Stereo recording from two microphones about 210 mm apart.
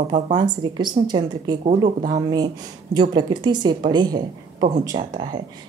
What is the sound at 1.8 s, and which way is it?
Speech, 35° right (ahead or behind).